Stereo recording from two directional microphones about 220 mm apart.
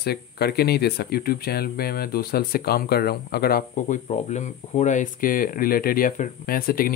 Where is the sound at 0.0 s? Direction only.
45° left (ahead or behind).